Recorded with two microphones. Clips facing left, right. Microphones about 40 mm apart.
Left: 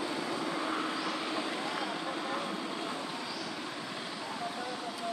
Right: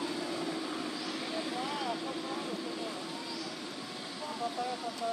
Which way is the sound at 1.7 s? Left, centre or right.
Centre.